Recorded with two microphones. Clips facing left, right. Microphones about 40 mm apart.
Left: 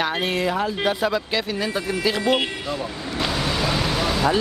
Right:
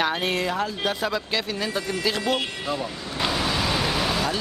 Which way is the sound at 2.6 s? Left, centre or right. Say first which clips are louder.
Left 1 dB; centre.